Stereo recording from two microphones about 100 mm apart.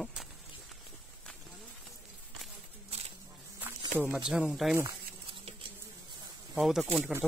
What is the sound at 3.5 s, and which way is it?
Snake, 20° right (ahead or behind).